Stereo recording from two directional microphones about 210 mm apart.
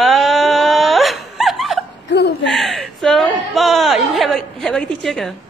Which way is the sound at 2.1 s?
55° left (ahead or behind).